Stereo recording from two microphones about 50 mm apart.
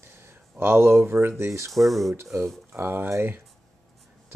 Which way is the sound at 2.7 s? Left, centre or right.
Right.